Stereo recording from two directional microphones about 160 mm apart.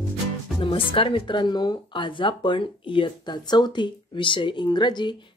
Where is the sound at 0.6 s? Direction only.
35° left (ahead or behind).